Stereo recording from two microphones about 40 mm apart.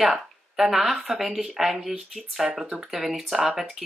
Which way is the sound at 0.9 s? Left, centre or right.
Right.